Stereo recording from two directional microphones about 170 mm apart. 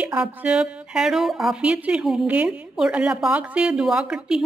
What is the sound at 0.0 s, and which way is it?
A woman's voice, 10° right (ahead or behind).